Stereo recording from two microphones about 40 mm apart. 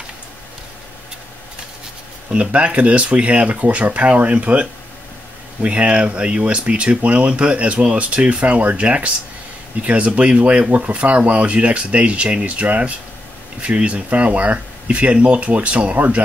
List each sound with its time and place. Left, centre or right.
2.5 s speech: right
12.6 s speech: right
13.6 s speech: right